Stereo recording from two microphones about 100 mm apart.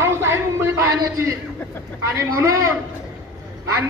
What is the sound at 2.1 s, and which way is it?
Speech, 30° right (ahead or behind).